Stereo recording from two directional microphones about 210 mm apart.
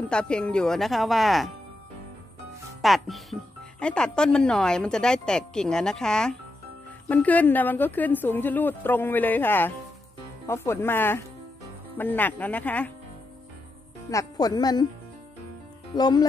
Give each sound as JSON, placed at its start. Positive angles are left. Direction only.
{"t": 0.1, "sound": "a woman's voice", "side_deg": 5}
{"t": 2.8, "sound": "a woman's voice", "side_deg": 0}
{"t": 14.1, "sound": "speech", "side_deg": 20}
{"t": 15.9, "sound": "speech", "side_deg": 20}